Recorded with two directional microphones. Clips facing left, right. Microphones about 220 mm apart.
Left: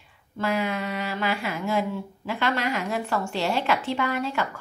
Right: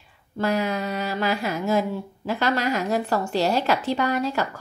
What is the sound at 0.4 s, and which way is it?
Speech, 40° right (ahead or behind).